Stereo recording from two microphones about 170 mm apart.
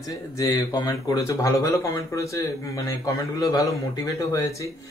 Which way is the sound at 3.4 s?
20° left (ahead or behind).